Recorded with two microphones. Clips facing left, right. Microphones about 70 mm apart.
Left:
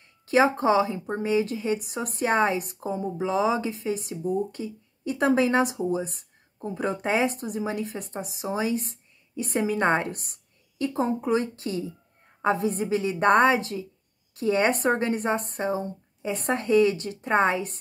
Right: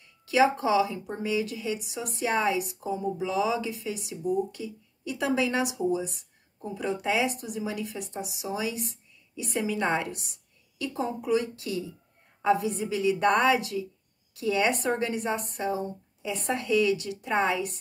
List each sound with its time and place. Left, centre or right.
0.0 s speech: left